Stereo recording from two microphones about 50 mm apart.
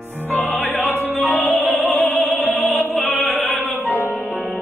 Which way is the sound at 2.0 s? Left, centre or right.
Left.